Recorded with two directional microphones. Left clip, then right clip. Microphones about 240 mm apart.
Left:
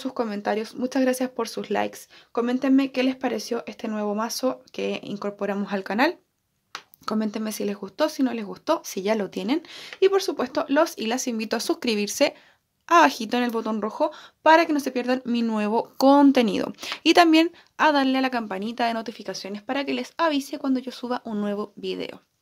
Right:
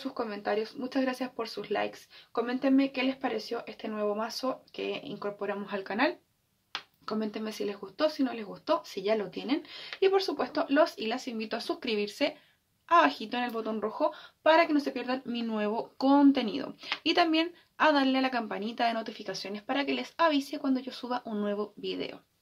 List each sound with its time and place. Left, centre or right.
0.0 s speech: left